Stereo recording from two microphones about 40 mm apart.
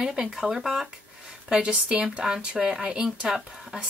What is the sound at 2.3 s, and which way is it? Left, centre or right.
Speech, centre.